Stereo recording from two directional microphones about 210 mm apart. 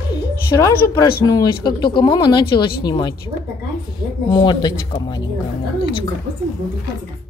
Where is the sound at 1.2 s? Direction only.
20° left (ahead or behind).